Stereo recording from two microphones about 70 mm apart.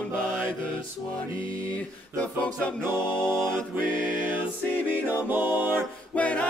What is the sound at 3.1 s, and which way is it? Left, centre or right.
Choir, right.